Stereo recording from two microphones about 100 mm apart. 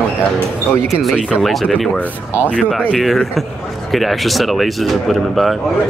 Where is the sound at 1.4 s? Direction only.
Centre (ahead or behind).